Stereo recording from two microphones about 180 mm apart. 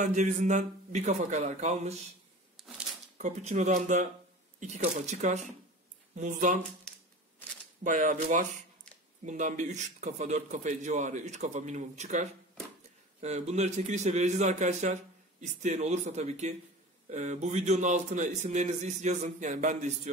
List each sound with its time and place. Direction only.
0.0 s a man's voice: 40° right (ahead or behind)
3.2 s a man's voice: 40° right (ahead or behind)
7.8 s a man's voice: 45° right (ahead or behind)